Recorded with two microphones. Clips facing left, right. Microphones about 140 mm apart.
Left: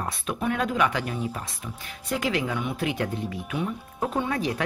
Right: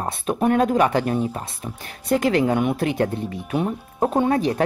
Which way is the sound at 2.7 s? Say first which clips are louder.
Right 6 dB; 35° right (ahead or behind).